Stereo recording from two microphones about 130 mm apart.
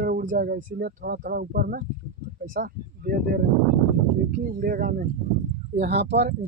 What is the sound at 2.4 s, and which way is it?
Speech, 90° right.